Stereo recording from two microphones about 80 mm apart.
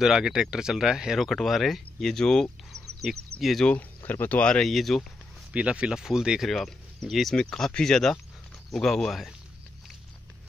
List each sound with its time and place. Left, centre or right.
0.0 s speech: centre
4.1 s speech: centre
4.6 s speech: centre
5.5 s speech: centre
6.5 s speech: centre